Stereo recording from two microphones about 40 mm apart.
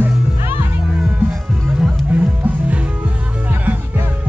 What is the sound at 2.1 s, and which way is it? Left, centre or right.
Music, right.